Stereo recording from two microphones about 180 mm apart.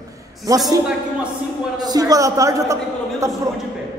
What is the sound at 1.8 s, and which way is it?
A man's voice, 20° right (ahead or behind).